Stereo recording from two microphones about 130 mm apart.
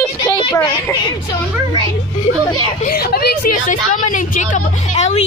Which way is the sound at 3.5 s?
90° left.